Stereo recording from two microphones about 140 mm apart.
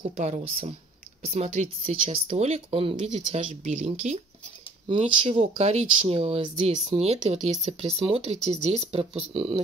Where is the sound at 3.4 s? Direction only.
60° right (ahead or behind).